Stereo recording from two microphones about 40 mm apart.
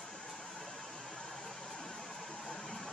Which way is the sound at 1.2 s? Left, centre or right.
Centre.